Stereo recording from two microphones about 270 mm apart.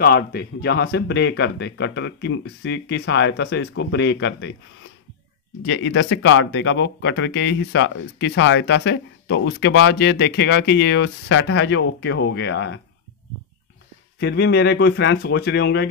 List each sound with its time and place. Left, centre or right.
0.0 s speech: left
5.7 s speech: left
14.2 s speech: left